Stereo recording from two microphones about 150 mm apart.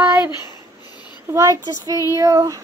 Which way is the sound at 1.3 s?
20° right (ahead or behind).